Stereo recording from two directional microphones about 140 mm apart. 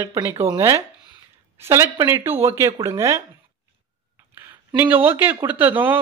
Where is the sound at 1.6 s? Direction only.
20° right (ahead or behind).